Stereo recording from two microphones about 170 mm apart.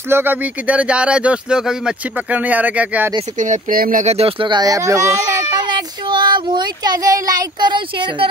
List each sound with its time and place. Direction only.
0.1 s speech: 10° right (ahead or behind)
3.3 s speech: 45° right (ahead or behind)
4.0 s speech: 35° right (ahead or behind)